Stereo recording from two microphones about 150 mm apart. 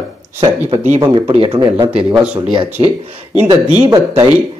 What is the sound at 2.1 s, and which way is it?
Speech, 10° right (ahead or behind).